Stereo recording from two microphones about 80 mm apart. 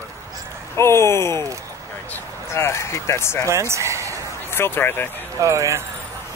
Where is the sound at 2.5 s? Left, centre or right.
Left.